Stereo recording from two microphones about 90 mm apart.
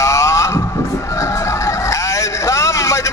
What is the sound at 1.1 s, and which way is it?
Music, 35° left (ahead or behind).